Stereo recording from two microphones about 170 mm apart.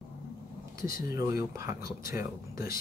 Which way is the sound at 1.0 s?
20° right (ahead or behind).